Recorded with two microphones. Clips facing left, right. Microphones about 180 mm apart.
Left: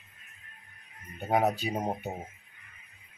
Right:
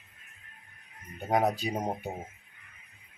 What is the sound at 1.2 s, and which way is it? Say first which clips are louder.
Speech: even; 5° left (ahead or behind).